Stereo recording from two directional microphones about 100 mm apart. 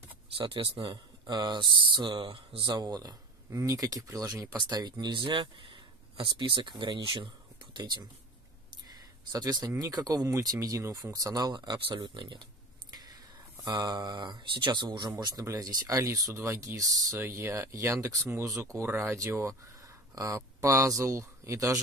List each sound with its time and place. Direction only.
0.4 s speech: 65° right (ahead or behind)
1.2 s speech: 45° right (ahead or behind)
2.8 s speech: 40° right (ahead or behind); by 12.4 s 55° right (ahead or behind)
12.9 s speech: 40° right (ahead or behind)